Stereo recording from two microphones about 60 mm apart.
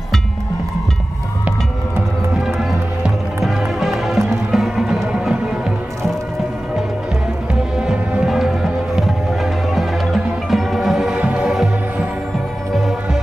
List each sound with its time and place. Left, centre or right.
3.4 s music: centre
7.5 s music: centre
11.1 s music: centre
12.7 s music: centre